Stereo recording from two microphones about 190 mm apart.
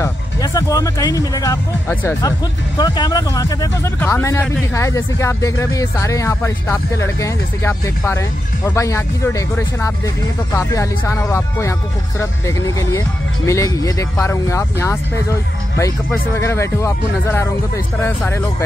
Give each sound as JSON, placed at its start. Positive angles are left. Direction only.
{"t": 0.0, "sound": "speech", "side_deg": 20}